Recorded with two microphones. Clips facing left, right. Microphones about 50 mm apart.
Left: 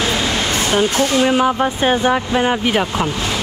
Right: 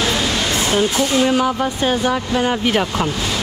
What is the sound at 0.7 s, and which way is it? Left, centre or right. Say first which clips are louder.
Speech: left 2 dB; left.